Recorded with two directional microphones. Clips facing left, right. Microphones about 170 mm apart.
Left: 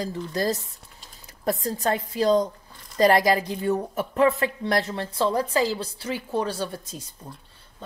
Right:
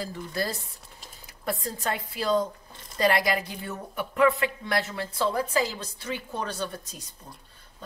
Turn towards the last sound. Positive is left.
turn(degrees=30)  # may be behind; listen again after turning